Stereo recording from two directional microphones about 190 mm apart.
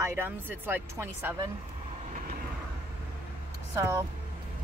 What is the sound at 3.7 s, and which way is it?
Speech, 15° right (ahead or behind).